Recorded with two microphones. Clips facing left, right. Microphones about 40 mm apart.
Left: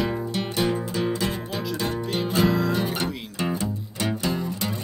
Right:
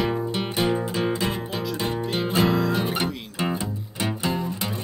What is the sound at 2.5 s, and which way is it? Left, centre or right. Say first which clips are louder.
Music: right 1 dB; centre.